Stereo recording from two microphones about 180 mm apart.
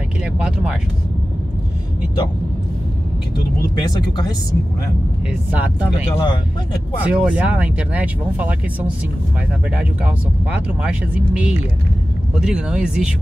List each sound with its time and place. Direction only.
0.2 s speech: 5° right (ahead or behind)
5.9 s speech: 30° left (ahead or behind)
7.1 s speech: 5° right (ahead or behind)
10.8 s speech: 5° right (ahead or behind)